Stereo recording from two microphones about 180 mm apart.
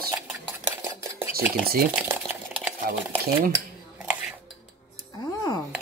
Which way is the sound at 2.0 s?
10° right (ahead or behind).